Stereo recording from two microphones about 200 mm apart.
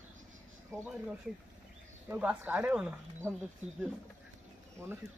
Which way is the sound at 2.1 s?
5° right (ahead or behind).